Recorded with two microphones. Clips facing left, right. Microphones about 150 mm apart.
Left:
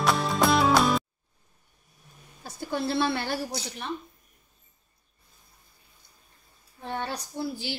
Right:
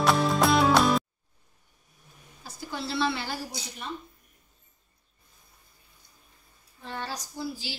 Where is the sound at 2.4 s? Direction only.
55° left (ahead or behind).